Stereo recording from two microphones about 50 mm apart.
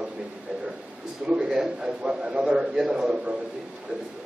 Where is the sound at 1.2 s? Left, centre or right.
Centre.